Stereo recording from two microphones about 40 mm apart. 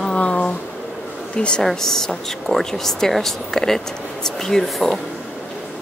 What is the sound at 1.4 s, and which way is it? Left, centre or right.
Speech, left.